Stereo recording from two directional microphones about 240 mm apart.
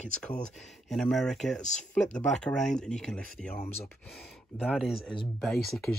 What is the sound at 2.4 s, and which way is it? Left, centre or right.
Speech, centre.